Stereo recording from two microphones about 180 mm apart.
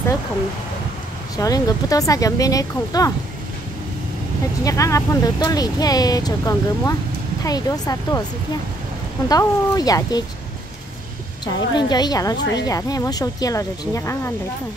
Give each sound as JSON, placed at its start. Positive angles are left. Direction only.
{"t": 1.3, "sound": "a woman's voice", "side_deg": 20}
{"t": 4.6, "sound": "a woman's voice", "side_deg": 15}
{"t": 9.3, "sound": "a woman's voice", "side_deg": 20}
{"t": 11.4, "sound": "a woman's voice", "side_deg": 25}